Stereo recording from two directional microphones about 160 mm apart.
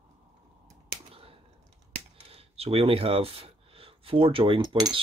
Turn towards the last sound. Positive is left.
turn(degrees=-30)  # may be behind; listen again after turning